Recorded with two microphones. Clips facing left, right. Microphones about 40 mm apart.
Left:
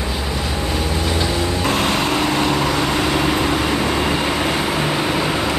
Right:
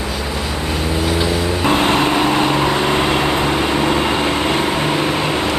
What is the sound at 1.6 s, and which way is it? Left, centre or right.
Vehicle, right.